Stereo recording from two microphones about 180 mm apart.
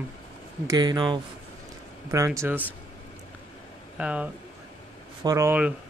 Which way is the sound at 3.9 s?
5° right (ahead or behind).